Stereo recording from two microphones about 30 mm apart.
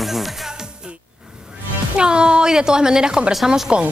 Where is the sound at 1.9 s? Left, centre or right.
Right.